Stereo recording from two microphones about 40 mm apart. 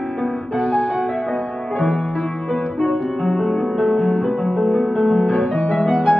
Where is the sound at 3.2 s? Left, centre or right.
Centre.